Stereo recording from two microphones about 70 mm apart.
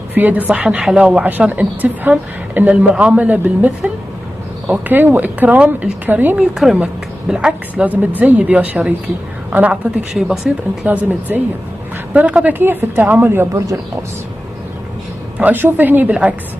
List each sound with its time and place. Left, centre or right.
0.1 s a woman's voice: right
6.5 s a woman's voice: centre
10.9 s a woman's voice: right
15.3 s a woman's voice: right